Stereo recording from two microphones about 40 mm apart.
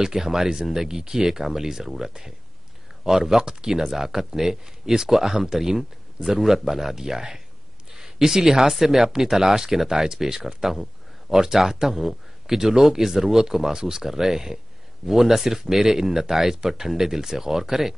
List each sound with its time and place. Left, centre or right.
0.0 s speech: centre